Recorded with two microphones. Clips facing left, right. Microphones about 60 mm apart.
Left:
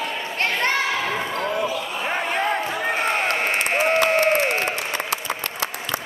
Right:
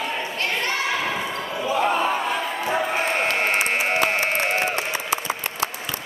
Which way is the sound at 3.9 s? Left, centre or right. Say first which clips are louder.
Left 6 dB; centre.